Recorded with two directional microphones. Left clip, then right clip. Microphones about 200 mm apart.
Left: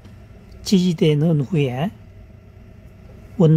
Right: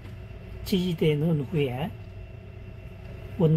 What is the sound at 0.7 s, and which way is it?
Speech, 60° left (ahead or behind).